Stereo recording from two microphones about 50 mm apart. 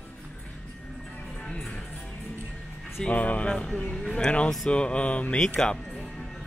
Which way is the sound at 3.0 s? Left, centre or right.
Left.